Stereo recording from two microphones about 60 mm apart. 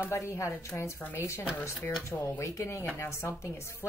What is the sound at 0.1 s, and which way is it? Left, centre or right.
Speech, left.